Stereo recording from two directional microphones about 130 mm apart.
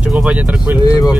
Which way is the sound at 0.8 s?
30° left (ahead or behind).